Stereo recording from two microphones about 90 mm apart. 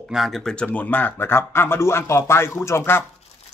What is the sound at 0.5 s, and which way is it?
Speech, 15° left (ahead or behind).